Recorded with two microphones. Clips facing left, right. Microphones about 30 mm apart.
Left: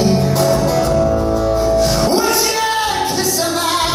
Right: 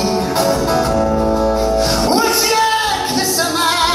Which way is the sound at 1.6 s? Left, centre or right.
Right.